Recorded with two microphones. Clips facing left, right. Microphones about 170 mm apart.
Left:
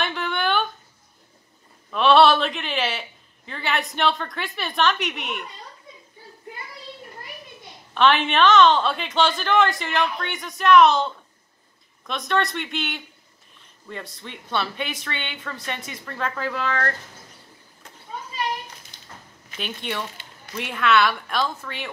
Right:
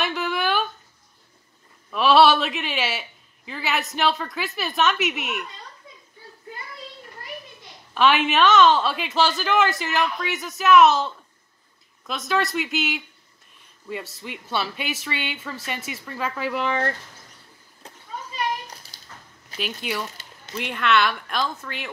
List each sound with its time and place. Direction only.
0.0 s a sound: 5° right (ahead or behind)
1.9 s a man's voice: 5° right (ahead or behind)
7.9 s a woman's voice: 5° right (ahead or behind)
18.8 s cat: 35° right (ahead or behind)
19.6 s a woman's voice: 5° right (ahead or behind)